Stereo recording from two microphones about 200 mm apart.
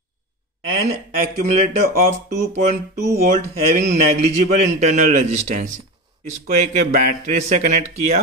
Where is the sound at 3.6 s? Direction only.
35° right (ahead or behind).